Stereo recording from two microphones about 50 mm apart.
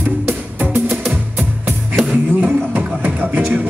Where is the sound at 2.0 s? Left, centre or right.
Right.